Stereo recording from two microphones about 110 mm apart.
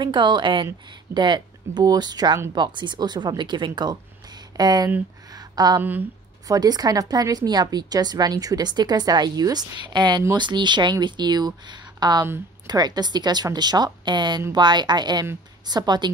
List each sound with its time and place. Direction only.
0.0 s a woman's voice: 45° right (ahead or behind)
5.8 s a woman's voice: 15° right (ahead or behind)
6.4 s a woman's voice: 35° right (ahead or behind)